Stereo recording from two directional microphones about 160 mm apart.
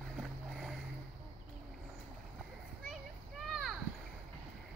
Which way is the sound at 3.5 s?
Centre (ahead or behind).